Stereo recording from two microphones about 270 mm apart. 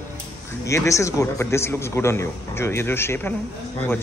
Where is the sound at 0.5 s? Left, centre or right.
Centre.